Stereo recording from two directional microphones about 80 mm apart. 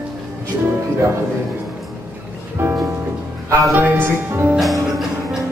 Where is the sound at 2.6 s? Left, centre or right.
Right.